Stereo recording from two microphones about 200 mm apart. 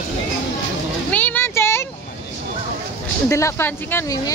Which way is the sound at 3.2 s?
15° left (ahead or behind).